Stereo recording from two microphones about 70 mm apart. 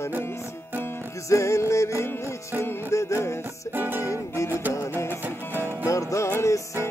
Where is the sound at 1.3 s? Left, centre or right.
Left.